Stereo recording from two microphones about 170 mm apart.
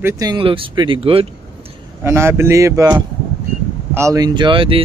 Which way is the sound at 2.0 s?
15° right (ahead or behind).